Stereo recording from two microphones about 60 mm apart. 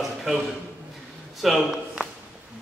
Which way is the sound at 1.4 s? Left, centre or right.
Centre.